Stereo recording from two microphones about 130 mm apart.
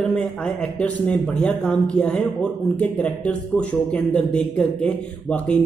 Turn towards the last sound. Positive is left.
turn(degrees=10)  # may be behind; listen again after turning